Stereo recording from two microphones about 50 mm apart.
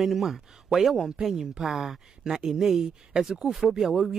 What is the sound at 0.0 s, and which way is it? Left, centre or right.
Speech, centre.